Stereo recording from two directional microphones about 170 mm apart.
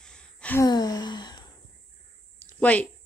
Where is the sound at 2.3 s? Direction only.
10° left (ahead or behind).